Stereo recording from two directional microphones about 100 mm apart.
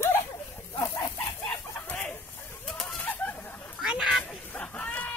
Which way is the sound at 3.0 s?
15° left (ahead or behind).